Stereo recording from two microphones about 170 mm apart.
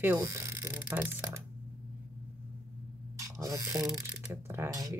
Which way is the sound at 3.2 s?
20° right (ahead or behind).